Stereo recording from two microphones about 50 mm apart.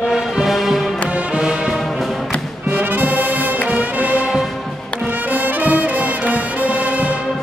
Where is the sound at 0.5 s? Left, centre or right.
Centre.